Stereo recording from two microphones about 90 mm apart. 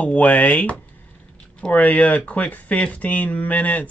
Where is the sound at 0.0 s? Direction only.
15° left (ahead or behind).